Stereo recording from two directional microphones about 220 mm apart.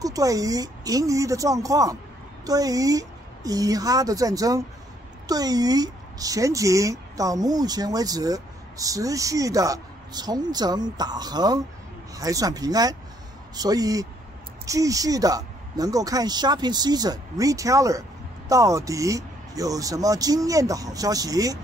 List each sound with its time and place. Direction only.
0.0 s speech: 15° right (ahead or behind)